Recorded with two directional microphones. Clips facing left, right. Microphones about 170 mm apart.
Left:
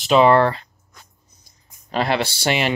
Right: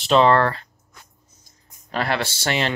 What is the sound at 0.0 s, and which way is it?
Speech, centre (ahead or behind).